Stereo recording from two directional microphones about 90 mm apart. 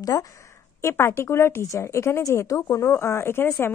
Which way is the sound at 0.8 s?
30° left (ahead or behind).